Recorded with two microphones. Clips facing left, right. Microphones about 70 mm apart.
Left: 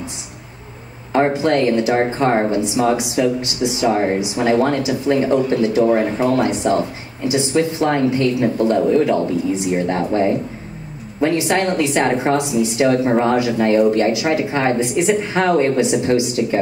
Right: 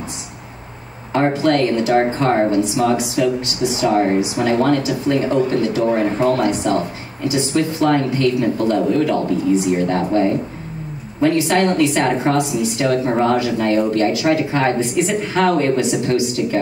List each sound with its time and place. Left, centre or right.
1.1 s speech: left